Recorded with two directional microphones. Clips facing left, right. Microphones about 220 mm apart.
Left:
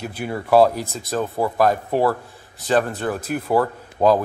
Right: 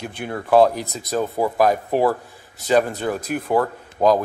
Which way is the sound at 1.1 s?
10° right (ahead or behind).